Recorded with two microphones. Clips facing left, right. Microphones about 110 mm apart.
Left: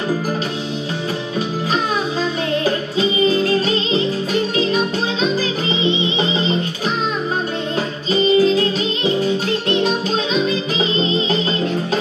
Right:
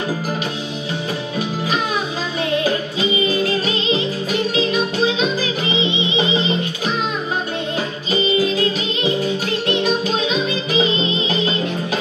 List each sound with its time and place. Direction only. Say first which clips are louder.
8.1 s music: left 5 dB; 35° left (ahead or behind)